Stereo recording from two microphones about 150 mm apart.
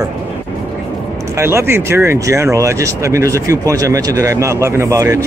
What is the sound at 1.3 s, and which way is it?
Speech, 15° right (ahead or behind).